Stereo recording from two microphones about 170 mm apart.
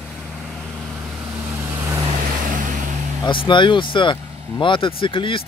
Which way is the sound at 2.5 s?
50° right (ahead or behind).